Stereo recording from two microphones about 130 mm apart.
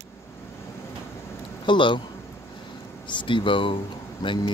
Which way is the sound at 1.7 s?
40° left (ahead or behind).